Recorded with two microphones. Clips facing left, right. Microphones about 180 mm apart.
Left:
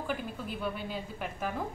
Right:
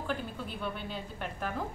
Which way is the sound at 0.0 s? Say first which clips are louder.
Even; 5° left (ahead or behind).